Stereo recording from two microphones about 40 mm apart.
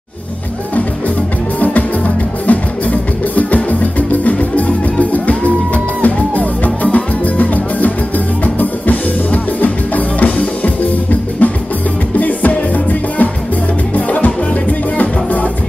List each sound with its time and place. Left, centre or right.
1.6 s music: left
6.0 s music: left